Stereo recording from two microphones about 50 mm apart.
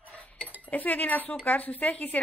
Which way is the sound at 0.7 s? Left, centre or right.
Left.